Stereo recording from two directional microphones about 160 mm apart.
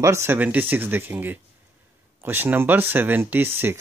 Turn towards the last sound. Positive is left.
turn(degrees=-15)  # may be behind; listen again after turning